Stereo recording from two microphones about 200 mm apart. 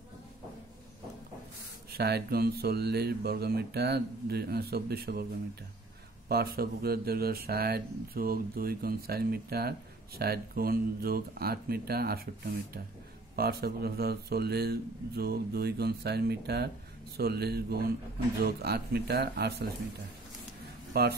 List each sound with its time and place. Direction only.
2.0 s speech: 55° right (ahead or behind)
6.2 s speech: 50° right (ahead or behind)
13.4 s speech: 50° right (ahead or behind)
20.9 s speech: 50° right (ahead or behind)